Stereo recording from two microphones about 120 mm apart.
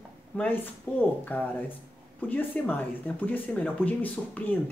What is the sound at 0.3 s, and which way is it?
Speech, 10° left (ahead or behind).